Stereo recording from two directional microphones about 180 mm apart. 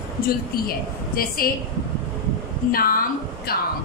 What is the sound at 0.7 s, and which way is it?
Speech, 55° left (ahead or behind).